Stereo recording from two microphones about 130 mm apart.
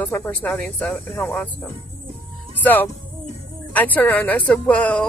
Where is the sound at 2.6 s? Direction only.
15° left (ahead or behind).